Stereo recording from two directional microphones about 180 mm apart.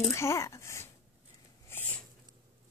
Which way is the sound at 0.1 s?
15° left (ahead or behind).